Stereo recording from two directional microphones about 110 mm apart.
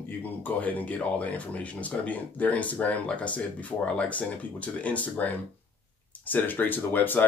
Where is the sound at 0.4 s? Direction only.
15° left (ahead or behind).